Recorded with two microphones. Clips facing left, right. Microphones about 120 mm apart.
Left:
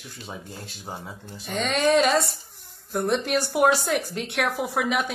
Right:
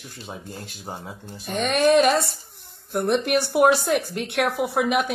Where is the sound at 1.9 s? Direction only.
Centre (ahead or behind).